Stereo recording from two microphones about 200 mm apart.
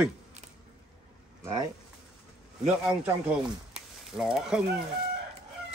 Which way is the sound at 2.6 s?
10° right (ahead or behind).